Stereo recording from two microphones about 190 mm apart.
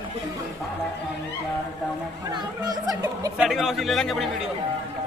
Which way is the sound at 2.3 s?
20° right (ahead or behind).